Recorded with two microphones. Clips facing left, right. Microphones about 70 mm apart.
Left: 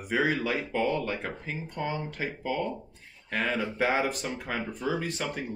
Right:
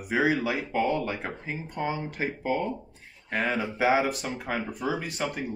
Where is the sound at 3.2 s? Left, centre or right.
Centre.